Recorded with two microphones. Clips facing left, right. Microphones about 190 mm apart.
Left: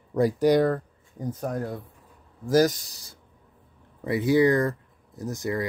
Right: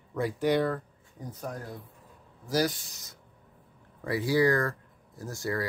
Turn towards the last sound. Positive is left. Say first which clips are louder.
# left 4 dB
turn(degrees=20)  # may be behind; listen again after turning